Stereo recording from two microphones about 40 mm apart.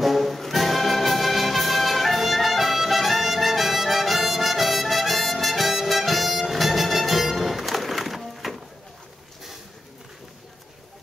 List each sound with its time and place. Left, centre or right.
0.0 s music: centre